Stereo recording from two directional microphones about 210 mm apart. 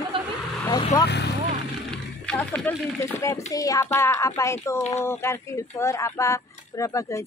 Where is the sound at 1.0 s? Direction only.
50° left (ahead or behind).